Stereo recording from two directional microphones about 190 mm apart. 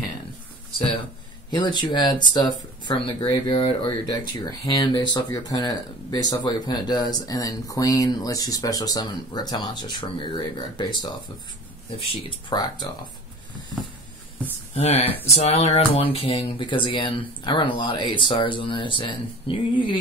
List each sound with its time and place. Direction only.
1.5 s speech: 25° left (ahead or behind)
12.2 s speech: 25° left (ahead or behind)
14.8 s speech: 35° left (ahead or behind)